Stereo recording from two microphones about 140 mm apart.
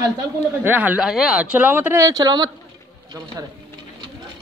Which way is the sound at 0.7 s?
10° right (ahead or behind).